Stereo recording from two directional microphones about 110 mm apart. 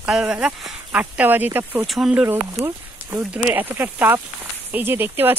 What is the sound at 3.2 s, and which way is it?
Speech, 20° right (ahead or behind).